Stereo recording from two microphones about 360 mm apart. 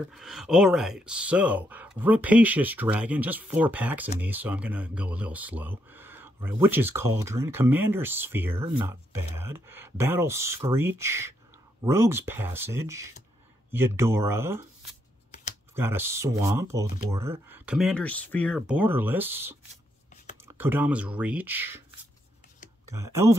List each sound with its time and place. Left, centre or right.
0.1 s speech: centre
9.1 s speech: right
9.5 s speech: centre
15.7 s speech: centre
22.8 s speech: right